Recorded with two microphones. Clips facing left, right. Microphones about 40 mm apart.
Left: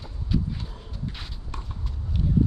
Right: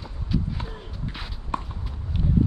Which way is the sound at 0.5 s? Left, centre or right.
Right.